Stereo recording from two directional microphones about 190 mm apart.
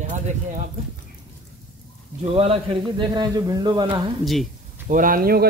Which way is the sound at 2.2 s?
30° right (ahead or behind).